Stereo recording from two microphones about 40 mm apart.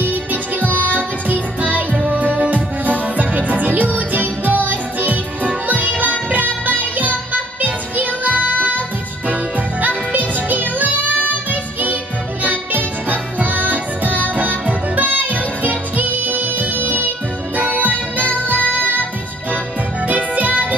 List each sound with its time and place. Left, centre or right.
0.0 s music: right
12.4 s music: right
20.1 s music: right